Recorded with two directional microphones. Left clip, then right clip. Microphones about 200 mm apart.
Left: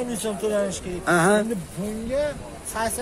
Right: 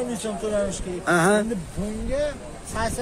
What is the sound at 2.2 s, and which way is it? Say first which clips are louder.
Speech: left 1 dB; 20° left (ahead or behind).